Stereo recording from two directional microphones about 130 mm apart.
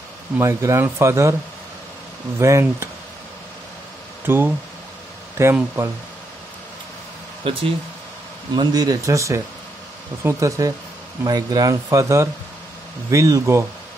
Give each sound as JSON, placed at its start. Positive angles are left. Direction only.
{"t": 0.4, "sound": "speech", "side_deg": -20}
{"t": 2.3, "sound": "speech", "side_deg": -20}
{"t": 4.3, "sound": "speech", "side_deg": -15}
{"t": 7.4, "sound": "speech", "side_deg": -45}
{"t": 8.5, "sound": "speech", "side_deg": -30}